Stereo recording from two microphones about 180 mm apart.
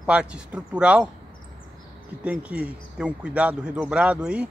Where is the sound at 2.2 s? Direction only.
10° right (ahead or behind).